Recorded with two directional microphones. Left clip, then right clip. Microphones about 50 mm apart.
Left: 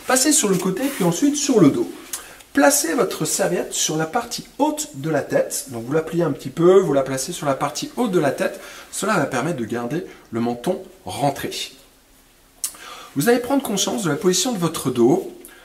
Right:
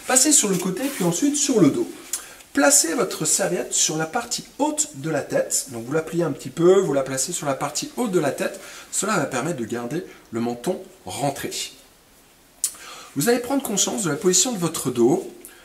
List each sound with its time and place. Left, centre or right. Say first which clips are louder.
0.0 s speech: left 1 dB; left
1.8 s a sound: left 2 dB; left
2.8 s speech: left 2 dB; left